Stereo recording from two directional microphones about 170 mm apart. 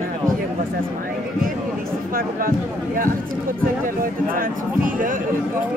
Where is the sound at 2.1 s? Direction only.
55° right (ahead or behind).